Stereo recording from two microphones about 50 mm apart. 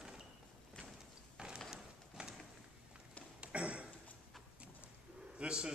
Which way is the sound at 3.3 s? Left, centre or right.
Right.